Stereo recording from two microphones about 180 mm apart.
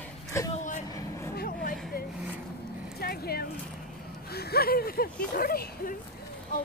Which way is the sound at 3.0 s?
60° left (ahead or behind).